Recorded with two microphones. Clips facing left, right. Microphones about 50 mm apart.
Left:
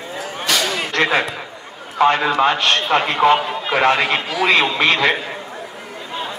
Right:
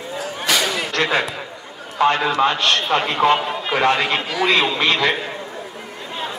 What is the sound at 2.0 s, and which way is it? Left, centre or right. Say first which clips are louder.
A man's voice: left 2 dB; left.